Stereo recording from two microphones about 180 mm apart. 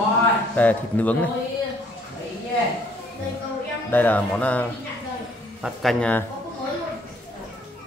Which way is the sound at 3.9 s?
10° left (ahead or behind).